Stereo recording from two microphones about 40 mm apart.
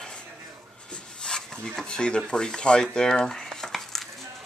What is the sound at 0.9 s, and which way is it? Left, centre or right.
Rub, centre.